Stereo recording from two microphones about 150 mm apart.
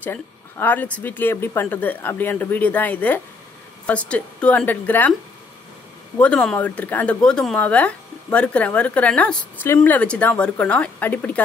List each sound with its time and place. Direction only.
0.0 s speech: 10° left (ahead or behind)
6.1 s speech: 10° left (ahead or behind)